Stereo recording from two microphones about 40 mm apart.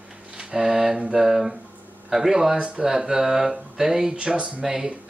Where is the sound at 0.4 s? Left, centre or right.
Centre.